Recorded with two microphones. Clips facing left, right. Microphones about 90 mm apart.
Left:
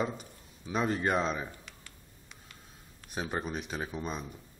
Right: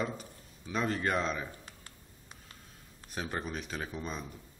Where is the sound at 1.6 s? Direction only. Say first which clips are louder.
Even; 35° right (ahead or behind).